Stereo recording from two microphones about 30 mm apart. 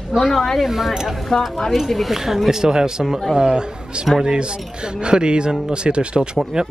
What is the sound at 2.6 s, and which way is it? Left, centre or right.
Speech, right.